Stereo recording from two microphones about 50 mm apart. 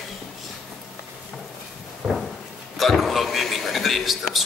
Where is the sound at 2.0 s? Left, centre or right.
Centre.